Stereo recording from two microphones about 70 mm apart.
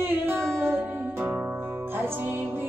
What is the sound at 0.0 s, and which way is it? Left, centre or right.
Music, right.